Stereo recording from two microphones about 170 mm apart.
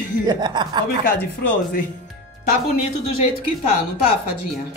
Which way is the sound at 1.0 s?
55° left (ahead or behind).